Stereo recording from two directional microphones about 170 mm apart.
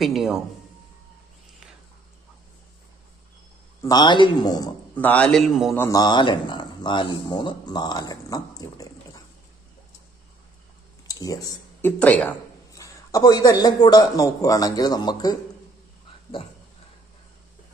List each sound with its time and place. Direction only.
0.0 s a man's voice: centre (ahead or behind)
3.8 s speech: 25° left (ahead or behind)
4.9 s a man's voice: 10° left (ahead or behind)
5.8 s speech: 20° left (ahead or behind)
11.1 s a sound: 20° left (ahead or behind)
12.0 s speech: 10° left (ahead or behind)